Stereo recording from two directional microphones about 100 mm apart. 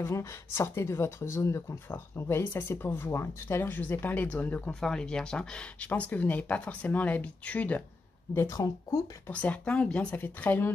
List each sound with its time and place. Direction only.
0.0 s speech: 30° left (ahead or behind)
8.4 s speech: 30° left (ahead or behind)
9.3 s speech: 15° left (ahead or behind)